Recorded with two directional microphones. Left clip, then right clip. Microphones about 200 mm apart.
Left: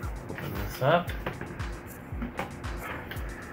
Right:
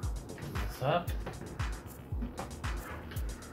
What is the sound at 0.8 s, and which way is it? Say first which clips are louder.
Speech: left 8 dB; 35° left (ahead or behind).